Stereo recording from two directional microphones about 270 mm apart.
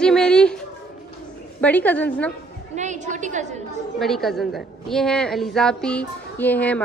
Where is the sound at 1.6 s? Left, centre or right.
Centre.